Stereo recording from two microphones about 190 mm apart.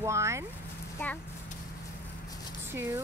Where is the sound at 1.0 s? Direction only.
10° left (ahead or behind).